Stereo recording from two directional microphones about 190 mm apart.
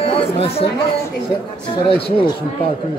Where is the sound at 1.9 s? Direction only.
30° left (ahead or behind).